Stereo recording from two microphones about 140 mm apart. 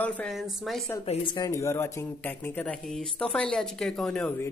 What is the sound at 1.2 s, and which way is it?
Speech, 30° left (ahead or behind).